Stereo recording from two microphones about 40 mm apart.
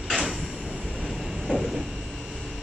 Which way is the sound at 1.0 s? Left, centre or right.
Centre.